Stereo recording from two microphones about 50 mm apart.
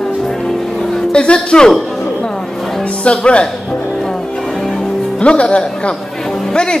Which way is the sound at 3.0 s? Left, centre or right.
Left.